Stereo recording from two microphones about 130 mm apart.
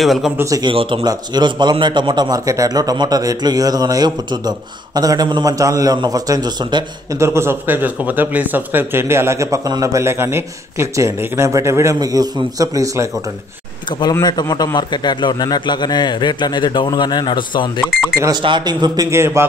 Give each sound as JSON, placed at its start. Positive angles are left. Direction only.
{"t": 0.0, "sound": "speech", "side_deg": 0}
{"t": 0.4, "sound": "a man's voice", "side_deg": -25}
{"t": 0.7, "sound": "a man's voice", "side_deg": -45}
{"t": 7.2, "sound": "a man's voice", "side_deg": -20}
{"t": 13.8, "sound": "a man's voice", "side_deg": 35}
{"t": 17.8, "sound": "speech", "side_deg": 0}
{"t": 18.4, "sound": "a man's voice", "side_deg": -35}